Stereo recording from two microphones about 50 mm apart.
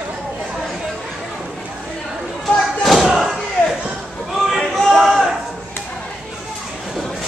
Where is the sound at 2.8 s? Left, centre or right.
Centre.